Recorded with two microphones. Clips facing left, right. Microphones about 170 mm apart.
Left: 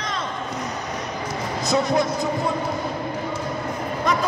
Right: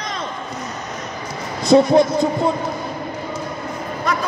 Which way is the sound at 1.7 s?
30° right (ahead or behind).